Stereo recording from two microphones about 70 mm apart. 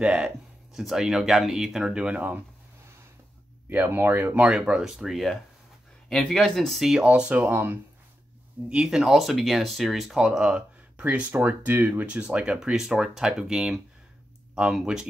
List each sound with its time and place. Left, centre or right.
0.0 s speech: centre
3.6 s speech: right
7.4 s speech: right
8.6 s speech: centre